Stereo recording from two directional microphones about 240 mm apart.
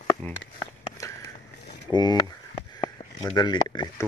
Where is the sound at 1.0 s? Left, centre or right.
Centre.